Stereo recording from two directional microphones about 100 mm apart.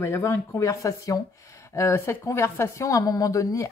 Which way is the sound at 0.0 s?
25° left (ahead or behind).